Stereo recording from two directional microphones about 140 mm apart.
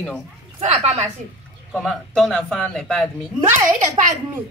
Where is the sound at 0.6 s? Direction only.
50° right (ahead or behind).